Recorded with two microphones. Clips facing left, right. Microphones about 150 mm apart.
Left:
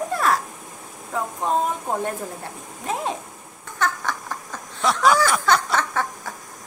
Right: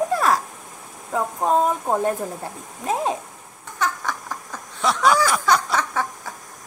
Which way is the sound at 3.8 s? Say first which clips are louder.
Even; 5° right (ahead or behind).